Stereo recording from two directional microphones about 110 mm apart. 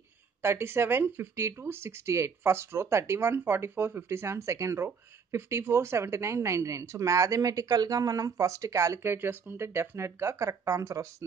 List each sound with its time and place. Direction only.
0.4 s speech: 20° right (ahead or behind)